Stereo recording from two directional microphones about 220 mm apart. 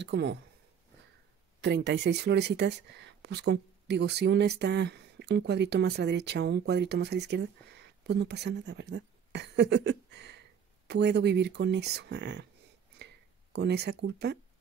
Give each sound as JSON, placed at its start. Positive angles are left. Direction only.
{"t": 0.0, "sound": "speech", "side_deg": -50}
{"t": 1.6, "sound": "speech", "side_deg": -50}
{"t": 13.0, "sound": "a sound", "side_deg": -50}